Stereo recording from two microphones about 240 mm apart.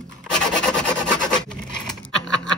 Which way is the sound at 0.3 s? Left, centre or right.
Centre.